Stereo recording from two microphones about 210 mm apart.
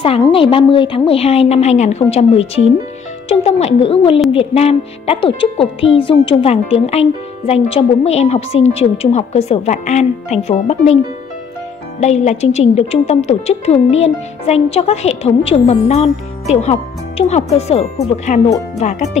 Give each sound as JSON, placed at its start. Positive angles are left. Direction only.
{"t": 0.0, "sound": "speech", "side_deg": 25}
{"t": 12.0, "sound": "speech", "side_deg": 30}